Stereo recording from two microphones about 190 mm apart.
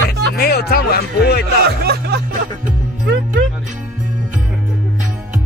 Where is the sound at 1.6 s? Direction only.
55° right (ahead or behind).